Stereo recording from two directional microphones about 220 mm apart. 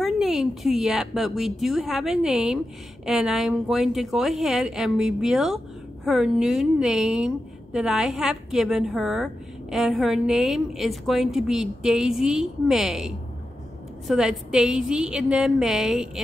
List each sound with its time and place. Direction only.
0.0 s a woman's voice: centre (ahead or behind)